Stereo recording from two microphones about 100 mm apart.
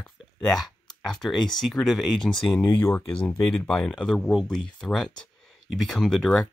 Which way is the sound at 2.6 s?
20° left (ahead or behind).